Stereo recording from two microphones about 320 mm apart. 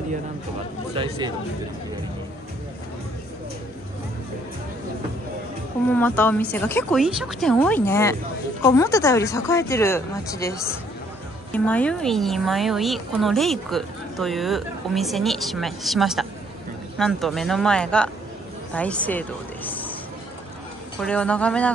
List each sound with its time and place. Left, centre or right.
0.9 s speech: centre
5.9 s a woman's voice: centre
21.0 s speech: centre